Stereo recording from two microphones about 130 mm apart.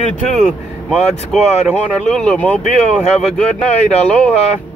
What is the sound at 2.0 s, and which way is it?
Speech, 5° left (ahead or behind).